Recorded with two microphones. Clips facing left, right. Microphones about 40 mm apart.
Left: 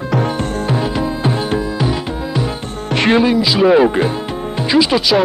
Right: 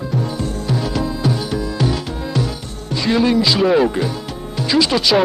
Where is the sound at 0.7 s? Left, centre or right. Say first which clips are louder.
Left 3 dB; left.